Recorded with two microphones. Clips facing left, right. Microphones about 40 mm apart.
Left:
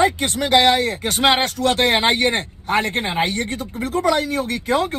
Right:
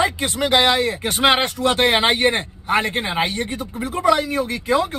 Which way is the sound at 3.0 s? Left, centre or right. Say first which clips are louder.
Left 1 dB; right.